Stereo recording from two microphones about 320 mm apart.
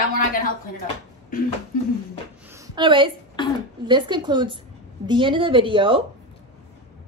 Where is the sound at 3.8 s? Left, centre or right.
Centre.